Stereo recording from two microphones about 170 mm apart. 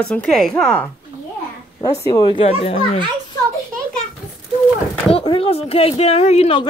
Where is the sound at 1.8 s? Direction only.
20° left (ahead or behind).